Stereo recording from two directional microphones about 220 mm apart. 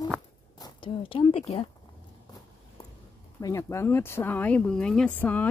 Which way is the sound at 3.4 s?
15° left (ahead or behind).